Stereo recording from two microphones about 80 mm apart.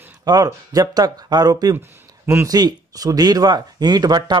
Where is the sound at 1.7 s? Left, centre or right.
Right.